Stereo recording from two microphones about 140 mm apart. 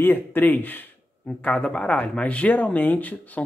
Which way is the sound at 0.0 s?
15° left (ahead or behind).